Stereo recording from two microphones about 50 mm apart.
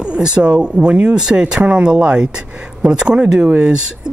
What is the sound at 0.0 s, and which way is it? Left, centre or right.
Speech, centre.